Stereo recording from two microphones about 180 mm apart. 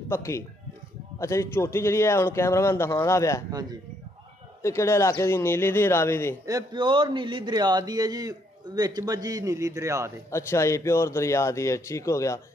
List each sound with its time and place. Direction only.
0.1 s speech: 15° left (ahead or behind)
4.6 s speech: 15° left (ahead or behind)
6.4 s speech: 20° right (ahead or behind)
10.3 s speech: 15° left (ahead or behind)